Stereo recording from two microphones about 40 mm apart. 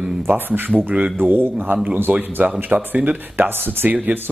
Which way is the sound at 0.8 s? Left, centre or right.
Right.